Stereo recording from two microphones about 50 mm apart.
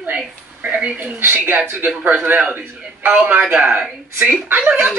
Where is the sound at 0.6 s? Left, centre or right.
Right.